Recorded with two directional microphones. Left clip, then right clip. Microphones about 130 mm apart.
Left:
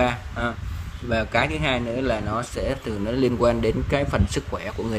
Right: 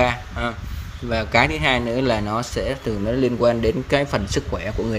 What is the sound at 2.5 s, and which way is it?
A man's voice, centre (ahead or behind).